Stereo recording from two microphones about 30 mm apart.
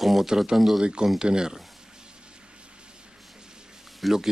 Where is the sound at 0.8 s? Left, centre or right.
Right.